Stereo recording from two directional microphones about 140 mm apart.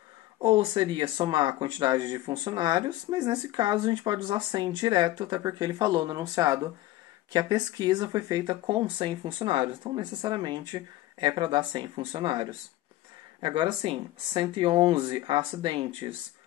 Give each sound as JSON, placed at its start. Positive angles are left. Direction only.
{"t": 0.4, "sound": "speech", "side_deg": -35}